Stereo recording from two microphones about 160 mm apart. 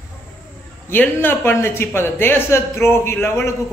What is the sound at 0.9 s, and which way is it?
Speech, 15° left (ahead or behind).